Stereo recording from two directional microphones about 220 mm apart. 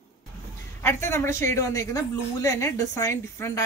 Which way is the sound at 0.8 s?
10° left (ahead or behind).